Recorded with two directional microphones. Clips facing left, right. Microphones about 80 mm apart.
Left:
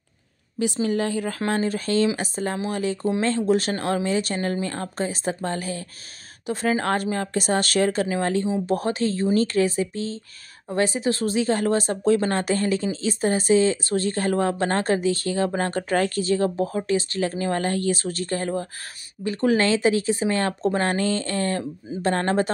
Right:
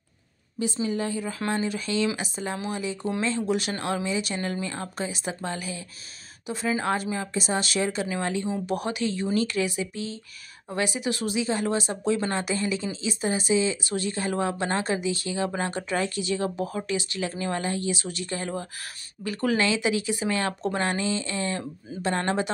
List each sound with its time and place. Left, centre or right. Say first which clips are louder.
0.8 s speech: left 5 dB; left
1.5 s speech: left 4 dB; left
3.2 s speech: left 5 dB; left
19.2 s speech: left 5 dB; left
19.6 s speech: left 5 dB; left
20.8 s speech: left 4 dB; left